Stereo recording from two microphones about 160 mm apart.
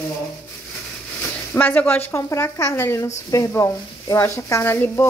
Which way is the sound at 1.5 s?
10° left (ahead or behind).